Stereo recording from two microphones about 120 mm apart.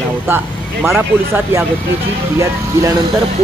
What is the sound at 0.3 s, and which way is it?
Speech, 20° right (ahead or behind).